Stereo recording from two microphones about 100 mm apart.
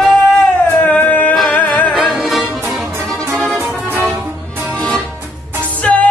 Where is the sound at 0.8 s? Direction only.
15° left (ahead or behind).